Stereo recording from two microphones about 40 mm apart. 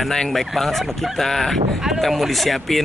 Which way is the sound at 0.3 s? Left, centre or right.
Centre.